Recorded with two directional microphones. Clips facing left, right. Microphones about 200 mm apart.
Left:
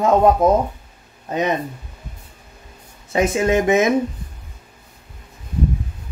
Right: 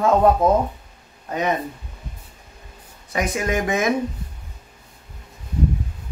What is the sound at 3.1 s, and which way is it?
Speech, 25° left (ahead or behind).